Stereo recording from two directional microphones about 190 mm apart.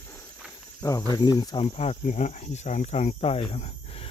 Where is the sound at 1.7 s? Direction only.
35° left (ahead or behind).